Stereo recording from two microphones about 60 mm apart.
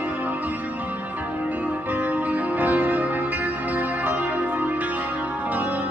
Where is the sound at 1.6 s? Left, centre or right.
Right.